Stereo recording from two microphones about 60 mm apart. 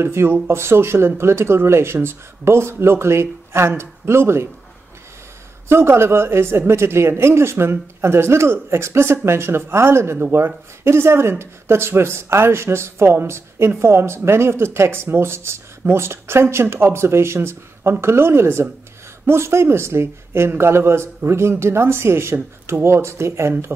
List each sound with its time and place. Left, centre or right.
0.0 s speech: right
5.7 s speech: right